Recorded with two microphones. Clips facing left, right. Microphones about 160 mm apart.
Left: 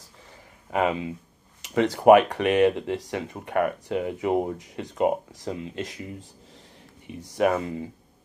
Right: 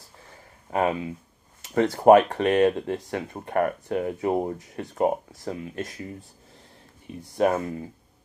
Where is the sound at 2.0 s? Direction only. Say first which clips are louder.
Even; 15° left (ahead or behind).